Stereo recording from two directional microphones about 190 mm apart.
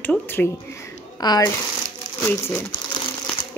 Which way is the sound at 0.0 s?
10° left (ahead or behind).